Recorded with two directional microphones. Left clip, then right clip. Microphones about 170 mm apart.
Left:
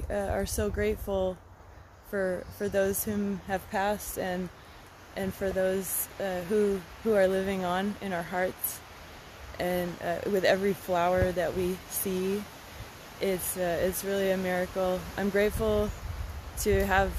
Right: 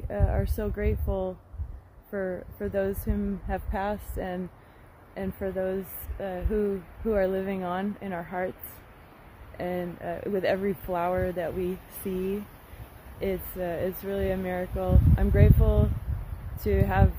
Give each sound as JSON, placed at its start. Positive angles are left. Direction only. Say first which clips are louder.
{"t": 0.1, "sound": "speech", "louder": "left 1 dB", "side_deg": -25}
{"t": 9.6, "sound": "speech", "louder": "left 2 dB", "side_deg": -20}